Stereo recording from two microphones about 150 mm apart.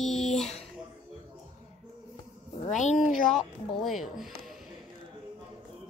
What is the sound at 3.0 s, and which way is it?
A woman's voice, centre (ahead or behind).